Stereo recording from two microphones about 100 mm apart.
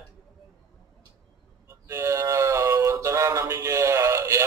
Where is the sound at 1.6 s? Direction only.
30° right (ahead or behind).